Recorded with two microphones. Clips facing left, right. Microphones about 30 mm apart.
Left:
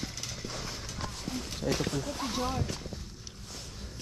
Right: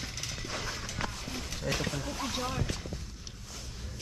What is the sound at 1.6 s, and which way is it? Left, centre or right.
Speech, centre.